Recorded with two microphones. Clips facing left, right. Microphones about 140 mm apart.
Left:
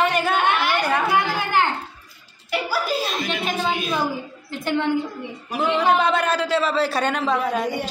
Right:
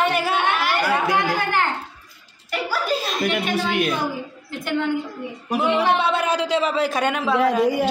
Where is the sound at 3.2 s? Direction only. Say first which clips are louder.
Right 2 dB; 65° right (ahead or behind).